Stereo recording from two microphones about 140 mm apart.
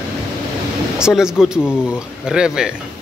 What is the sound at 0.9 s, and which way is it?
Speech, 5° right (ahead or behind).